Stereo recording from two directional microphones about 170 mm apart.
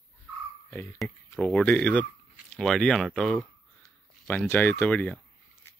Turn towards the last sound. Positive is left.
turn(degrees=10)  # may be behind; listen again after turning